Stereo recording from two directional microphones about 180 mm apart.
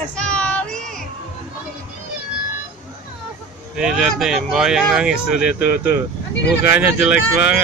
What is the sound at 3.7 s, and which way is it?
Speech, 5° right (ahead or behind).